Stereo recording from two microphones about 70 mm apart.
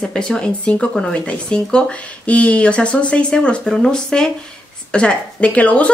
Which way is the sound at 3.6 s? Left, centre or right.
Centre.